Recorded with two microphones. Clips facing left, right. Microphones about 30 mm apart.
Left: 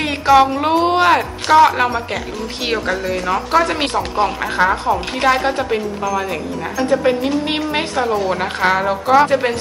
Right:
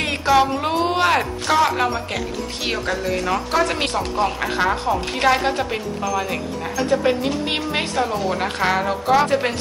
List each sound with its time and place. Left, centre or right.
0.0 s speech: centre